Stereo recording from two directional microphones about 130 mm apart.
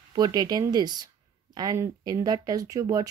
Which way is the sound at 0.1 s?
30° right (ahead or behind).